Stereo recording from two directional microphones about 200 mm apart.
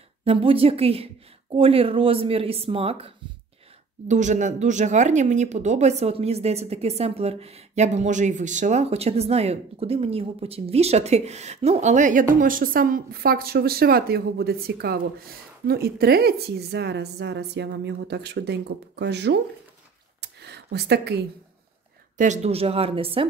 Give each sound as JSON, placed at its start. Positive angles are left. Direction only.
{"t": 0.2, "sound": "a woman's voice", "side_deg": -30}
{"t": 4.1, "sound": "a woman's voice", "side_deg": -35}
{"t": 20.2, "sound": "a sound", "side_deg": -55}
{"t": 22.1, "sound": "a woman's voice", "side_deg": -40}